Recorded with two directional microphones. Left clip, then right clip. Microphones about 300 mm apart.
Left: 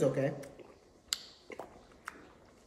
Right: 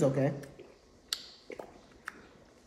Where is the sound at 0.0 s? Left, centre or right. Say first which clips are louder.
Right 2 dB; centre.